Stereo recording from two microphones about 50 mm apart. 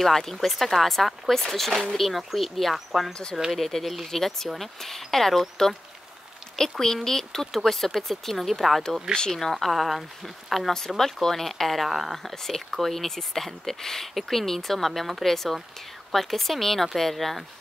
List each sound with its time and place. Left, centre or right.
0.0 s speech: centre
3.1 s speech: centre
3.5 s speech: centre
6.6 s speech: centre